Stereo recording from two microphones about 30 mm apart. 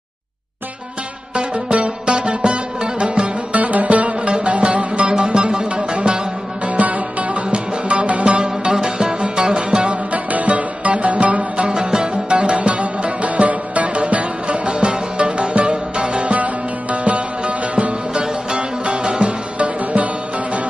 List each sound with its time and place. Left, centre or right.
1.3 s music: right
3.5 s music: right
6.7 s music: right
8.3 s music: right
9.5 s music: right
10.1 s music: right
11.6 s music: right
18.1 s music: right
19.6 s music: right